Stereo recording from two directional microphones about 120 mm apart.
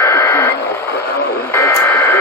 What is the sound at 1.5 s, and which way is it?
Radio, 25° left (ahead or behind).